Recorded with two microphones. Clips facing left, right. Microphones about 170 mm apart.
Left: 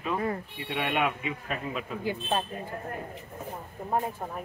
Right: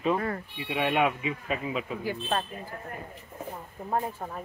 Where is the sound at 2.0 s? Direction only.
20° left (ahead or behind).